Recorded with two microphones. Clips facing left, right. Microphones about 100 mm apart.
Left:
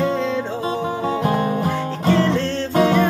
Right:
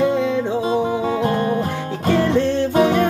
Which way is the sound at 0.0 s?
10° right (ahead or behind).